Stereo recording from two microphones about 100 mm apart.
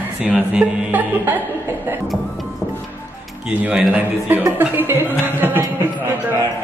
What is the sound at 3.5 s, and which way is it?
Speech, 15° right (ahead or behind).